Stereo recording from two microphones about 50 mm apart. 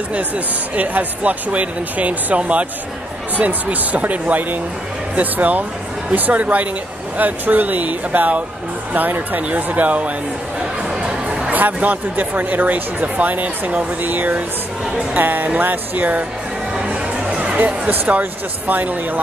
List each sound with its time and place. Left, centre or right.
0.7 s speech: right
11.0 s chatter: centre
11.5 s speech: right
17.3 s music: right
17.8 s speech: right